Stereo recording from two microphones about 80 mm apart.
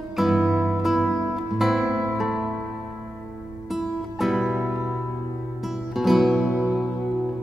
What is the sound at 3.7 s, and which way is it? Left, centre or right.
Music, centre.